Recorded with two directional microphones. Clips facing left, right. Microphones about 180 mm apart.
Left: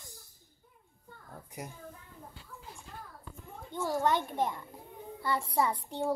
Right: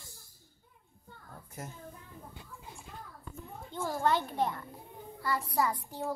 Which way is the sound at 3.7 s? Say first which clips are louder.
Left 1 dB; 15° left (ahead or behind).